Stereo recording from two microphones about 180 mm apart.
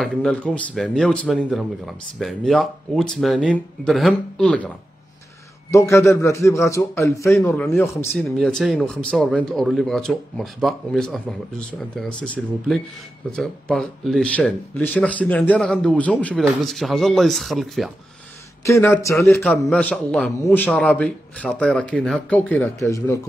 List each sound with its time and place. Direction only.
0.0 s a man's voice: 5° left (ahead or behind)
7.5 s speech: 5° left (ahead or behind)
12.2 s speech: 5° left (ahead or behind)
18.6 s a man's voice: 15° left (ahead or behind)
22.8 s a man's voice: 15° left (ahead or behind)